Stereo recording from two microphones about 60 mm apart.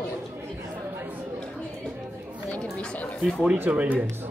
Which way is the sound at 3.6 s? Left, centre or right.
Right.